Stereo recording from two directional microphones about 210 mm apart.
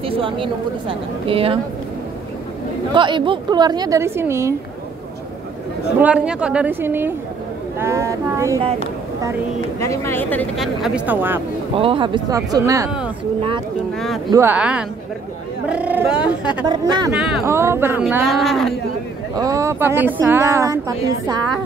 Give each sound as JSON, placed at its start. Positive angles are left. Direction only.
{"t": 0.0, "sound": "a woman's voice", "side_deg": -25}
{"t": 2.9, "sound": "a woman's voice", "side_deg": -25}
{"t": 5.9, "sound": "speech", "side_deg": -5}
{"t": 9.8, "sound": "speech", "side_deg": 15}
{"t": 11.7, "sound": "speech", "side_deg": -25}
{"t": 13.9, "sound": "speech", "side_deg": 0}
{"t": 14.3, "sound": "speech", "side_deg": -10}
{"t": 16.6, "sound": "a woman's voice", "side_deg": -20}
{"t": 17.1, "sound": "speech", "side_deg": -5}
{"t": 18.0, "sound": "speech", "side_deg": 0}
{"t": 19.3, "sound": "speech", "side_deg": -15}